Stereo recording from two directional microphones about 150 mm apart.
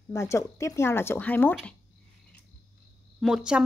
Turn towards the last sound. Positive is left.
turn(degrees=-5)  # may be behind; listen again after turning